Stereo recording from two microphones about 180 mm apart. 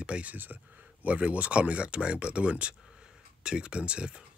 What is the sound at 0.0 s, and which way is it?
Speech, 5° right (ahead or behind).